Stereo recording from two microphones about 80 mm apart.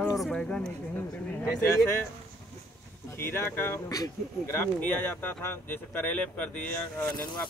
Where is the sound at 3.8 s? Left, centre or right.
Left.